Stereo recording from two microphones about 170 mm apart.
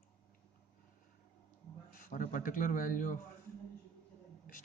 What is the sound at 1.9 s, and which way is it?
A man's voice, 55° left (ahead or behind).